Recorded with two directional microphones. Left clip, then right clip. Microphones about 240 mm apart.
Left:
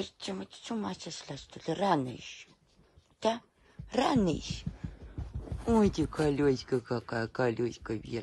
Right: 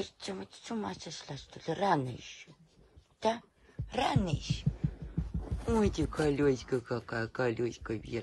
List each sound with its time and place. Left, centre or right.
0.0 s speech: centre
5.7 s speech: centre